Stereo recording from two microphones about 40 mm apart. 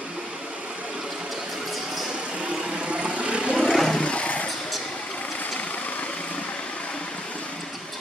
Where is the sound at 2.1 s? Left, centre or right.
Right.